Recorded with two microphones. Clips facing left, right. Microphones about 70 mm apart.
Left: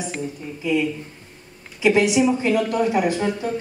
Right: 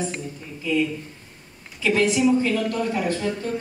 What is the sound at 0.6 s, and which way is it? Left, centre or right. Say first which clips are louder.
Speech: left 1 dB; centre.